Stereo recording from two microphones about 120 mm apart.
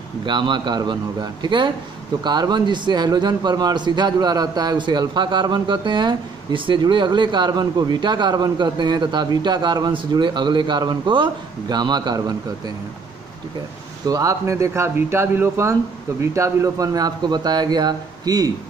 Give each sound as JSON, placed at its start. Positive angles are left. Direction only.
{"t": 0.2, "sound": "a man's voice", "side_deg": -40}
{"t": 14.0, "sound": "speech", "side_deg": -30}